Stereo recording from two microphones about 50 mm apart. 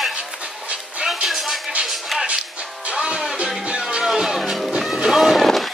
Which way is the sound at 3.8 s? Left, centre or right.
Centre.